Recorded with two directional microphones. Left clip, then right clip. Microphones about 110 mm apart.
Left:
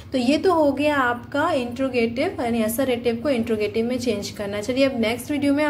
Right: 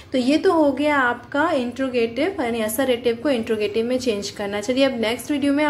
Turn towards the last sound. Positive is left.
turn(degrees=25)  # may be behind; listen again after turning